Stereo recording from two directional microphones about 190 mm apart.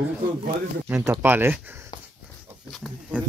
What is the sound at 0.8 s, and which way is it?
Speech, 15° right (ahead or behind).